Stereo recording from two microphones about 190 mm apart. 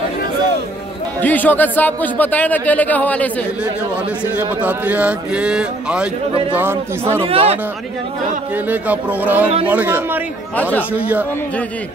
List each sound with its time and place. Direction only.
1.2 s speech: 10° left (ahead or behind)
4.6 s speech: 10° right (ahead or behind)
7.2 s speech: 30° right (ahead or behind)
8.6 s speech: 10° right (ahead or behind)